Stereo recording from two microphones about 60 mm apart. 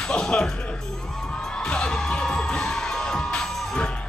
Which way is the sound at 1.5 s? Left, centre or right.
Centre.